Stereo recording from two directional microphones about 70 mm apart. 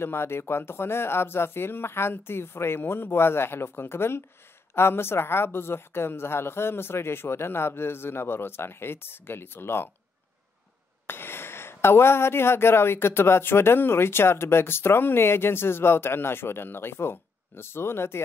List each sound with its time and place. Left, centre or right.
0.0 s speech: left
11.1 s speech: left